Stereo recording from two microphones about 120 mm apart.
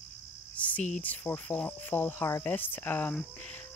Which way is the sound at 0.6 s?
10° left (ahead or behind).